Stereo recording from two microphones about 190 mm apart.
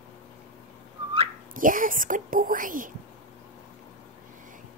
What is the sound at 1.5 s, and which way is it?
Speech, 45° right (ahead or behind).